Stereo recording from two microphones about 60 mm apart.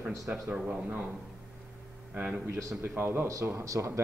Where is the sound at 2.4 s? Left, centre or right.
Right.